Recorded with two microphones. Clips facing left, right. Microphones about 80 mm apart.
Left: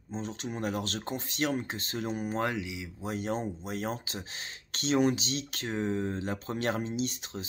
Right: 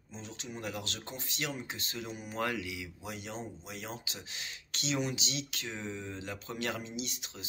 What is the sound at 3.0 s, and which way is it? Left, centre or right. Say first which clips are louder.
Speech: left 11 dB; left.